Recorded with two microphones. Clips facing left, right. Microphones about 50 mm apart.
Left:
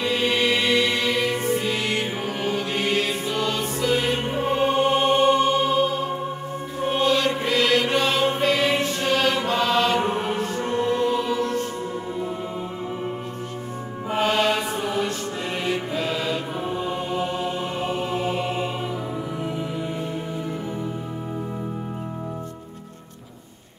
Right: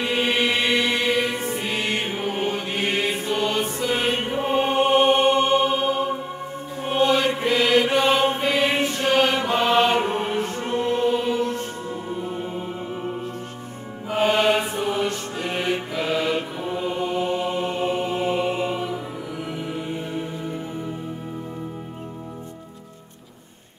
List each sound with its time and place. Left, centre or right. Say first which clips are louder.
0.0 s mantra: even; right
1.5 s music: left 2 dB; right
6.9 s mantra: right 2 dB; right
8.4 s music: even; right
9.0 s mantra: right 3 dB; centre
14.1 s mantra: right 2 dB; right
19.4 s music: right 1 dB; right